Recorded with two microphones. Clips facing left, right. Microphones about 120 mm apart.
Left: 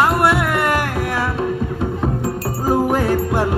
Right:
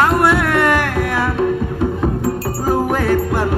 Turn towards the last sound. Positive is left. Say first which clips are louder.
# right 1 dB
turn(degrees=10)  # may be behind; listen again after turning